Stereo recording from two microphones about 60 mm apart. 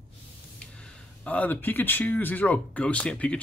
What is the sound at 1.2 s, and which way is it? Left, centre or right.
Speech, left.